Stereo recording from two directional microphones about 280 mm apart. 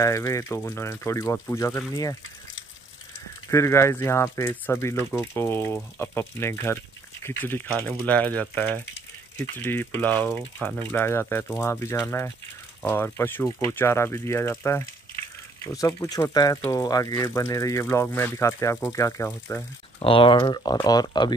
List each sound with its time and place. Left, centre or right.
0.0 s speech: centre
3.4 s speech: centre
20.0 s speech: centre